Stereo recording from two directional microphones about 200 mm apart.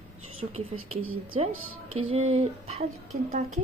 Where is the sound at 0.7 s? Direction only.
90° right.